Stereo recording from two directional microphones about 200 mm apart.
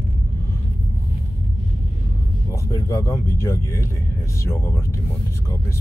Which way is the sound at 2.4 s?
15° left (ahead or behind).